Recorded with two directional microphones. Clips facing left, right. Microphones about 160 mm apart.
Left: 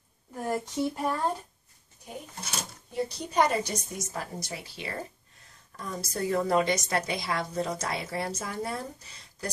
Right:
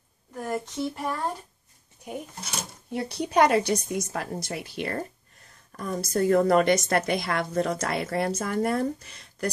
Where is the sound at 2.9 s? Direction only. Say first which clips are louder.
Right 3 dB; 70° right (ahead or behind).